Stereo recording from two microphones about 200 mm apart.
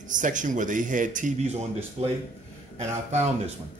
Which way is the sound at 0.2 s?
40° right (ahead or behind).